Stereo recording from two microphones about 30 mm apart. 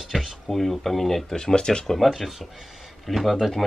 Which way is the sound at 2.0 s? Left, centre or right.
Centre.